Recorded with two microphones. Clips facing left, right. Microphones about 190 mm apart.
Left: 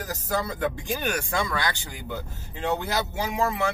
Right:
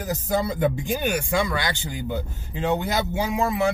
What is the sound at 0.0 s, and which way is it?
Speech, 20° right (ahead or behind).